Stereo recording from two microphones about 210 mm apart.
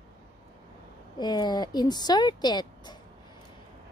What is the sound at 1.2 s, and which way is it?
Speech, 20° left (ahead or behind).